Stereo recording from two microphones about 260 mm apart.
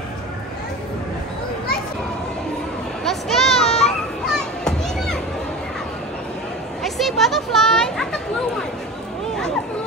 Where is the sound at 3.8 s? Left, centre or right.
Centre.